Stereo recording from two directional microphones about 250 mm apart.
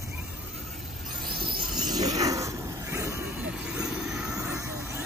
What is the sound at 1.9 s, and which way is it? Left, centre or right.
Vehicle, centre.